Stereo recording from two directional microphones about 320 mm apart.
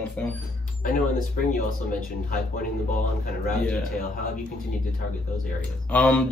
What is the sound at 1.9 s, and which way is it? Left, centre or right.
Speech, left.